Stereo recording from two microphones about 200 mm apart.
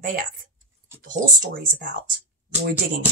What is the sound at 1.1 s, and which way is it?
Speech, 40° right (ahead or behind).